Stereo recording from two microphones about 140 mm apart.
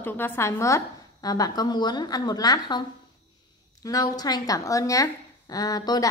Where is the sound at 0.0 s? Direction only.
15° left (ahead or behind).